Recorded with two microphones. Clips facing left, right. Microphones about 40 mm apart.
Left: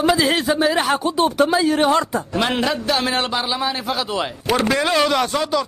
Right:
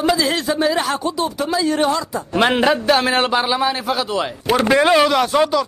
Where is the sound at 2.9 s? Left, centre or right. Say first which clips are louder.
Right 4 dB; centre.